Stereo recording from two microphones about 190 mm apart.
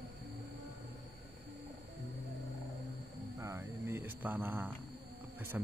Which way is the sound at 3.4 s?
15° right (ahead or behind).